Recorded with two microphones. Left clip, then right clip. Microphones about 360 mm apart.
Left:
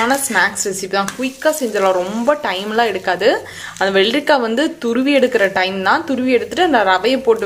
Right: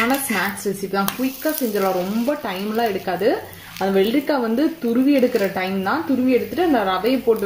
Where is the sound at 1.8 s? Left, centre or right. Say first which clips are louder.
Left 8 dB; left.